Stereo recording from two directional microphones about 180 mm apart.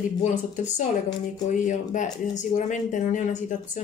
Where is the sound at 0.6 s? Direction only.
40° left (ahead or behind).